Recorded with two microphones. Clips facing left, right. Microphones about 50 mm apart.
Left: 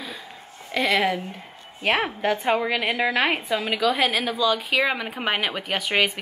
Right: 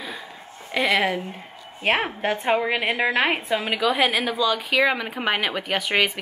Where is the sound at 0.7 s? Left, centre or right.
Centre.